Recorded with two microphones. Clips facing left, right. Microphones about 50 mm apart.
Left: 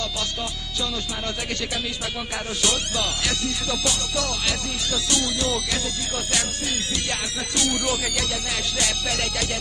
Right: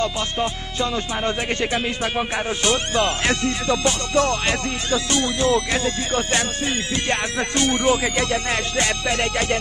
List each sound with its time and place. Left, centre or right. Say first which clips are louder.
0.0 s speech: right 6 dB; right